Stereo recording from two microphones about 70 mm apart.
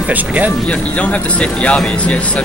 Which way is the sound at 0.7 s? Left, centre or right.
Centre.